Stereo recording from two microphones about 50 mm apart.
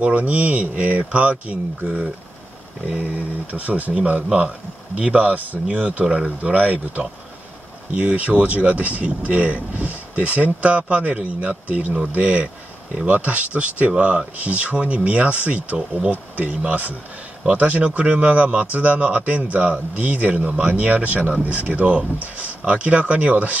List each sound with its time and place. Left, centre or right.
0.0 s speech: right
3.5 s speech: right
6.5 s speech: right